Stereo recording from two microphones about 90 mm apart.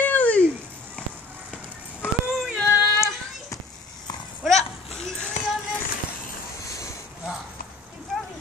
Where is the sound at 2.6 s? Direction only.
35° left (ahead or behind).